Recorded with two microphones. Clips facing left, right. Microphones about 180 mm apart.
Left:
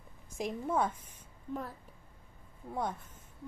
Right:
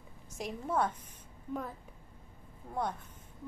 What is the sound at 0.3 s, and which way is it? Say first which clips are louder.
Speech: left 2 dB; 10° left (ahead or behind).